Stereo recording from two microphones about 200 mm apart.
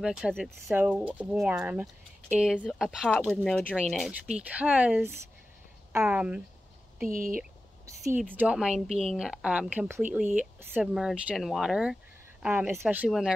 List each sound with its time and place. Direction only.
0.0 s speech: 5° right (ahead or behind)
7.1 s speech: 45° right (ahead or behind)
8.4 s speech: 5° right (ahead or behind)
8.8 s a woman's voice: 30° right (ahead or behind)
9.1 s speech: 5° right (ahead or behind)